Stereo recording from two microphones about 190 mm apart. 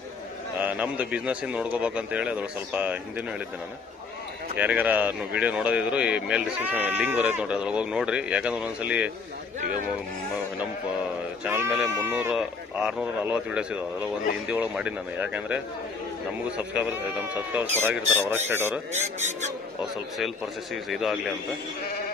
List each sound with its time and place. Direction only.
0.6 s speech: 10° right (ahead or behind)
4.6 s speech: 10° right (ahead or behind)
11.4 s speech: 10° right (ahead or behind)
18.9 s speech: 40° right (ahead or behind)
20.2 s a man's voice: centre (ahead or behind)